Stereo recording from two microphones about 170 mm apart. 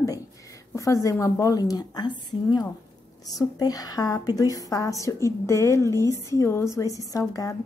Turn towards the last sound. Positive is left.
turn(degrees=20)  # may be behind; listen again after turning